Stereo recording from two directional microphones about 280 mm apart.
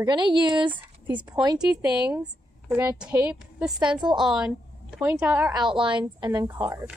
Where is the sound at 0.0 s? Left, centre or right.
Centre.